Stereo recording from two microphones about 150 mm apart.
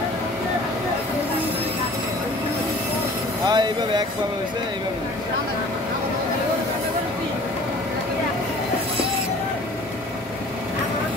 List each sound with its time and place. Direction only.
3.4 s vehicle: 30° right (ahead or behind)